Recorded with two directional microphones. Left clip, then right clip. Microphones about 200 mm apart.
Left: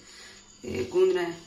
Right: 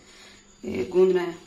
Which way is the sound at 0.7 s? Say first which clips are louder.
Right 3 dB; 45° right (ahead or behind).